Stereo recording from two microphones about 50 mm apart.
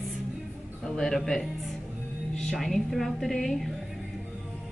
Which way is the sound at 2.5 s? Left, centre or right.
Centre.